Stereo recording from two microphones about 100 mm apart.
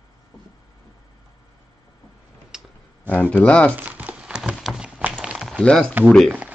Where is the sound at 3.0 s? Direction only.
15° left (ahead or behind).